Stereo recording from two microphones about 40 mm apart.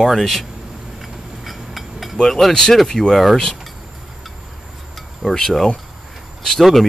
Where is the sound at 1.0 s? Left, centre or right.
Centre.